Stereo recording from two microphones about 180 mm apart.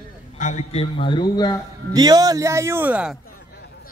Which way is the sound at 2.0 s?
20° right (ahead or behind).